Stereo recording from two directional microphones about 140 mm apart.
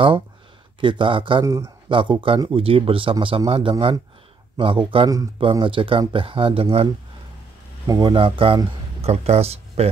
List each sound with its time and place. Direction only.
0.7 s speech: 35° right (ahead or behind)
1.4 s a man's voice: 20° right (ahead or behind)
1.9 s speech: 35° right (ahead or behind)
7.8 s speech: 30° right (ahead or behind); by 9.8 s 45° right (ahead or behind)